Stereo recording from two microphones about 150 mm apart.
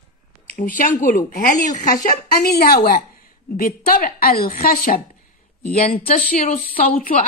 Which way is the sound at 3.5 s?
70° left (ahead or behind).